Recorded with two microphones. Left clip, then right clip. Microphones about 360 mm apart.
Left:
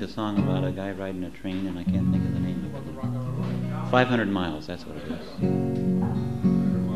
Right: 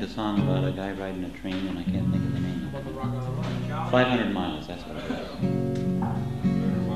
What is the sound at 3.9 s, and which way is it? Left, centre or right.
Speech, left.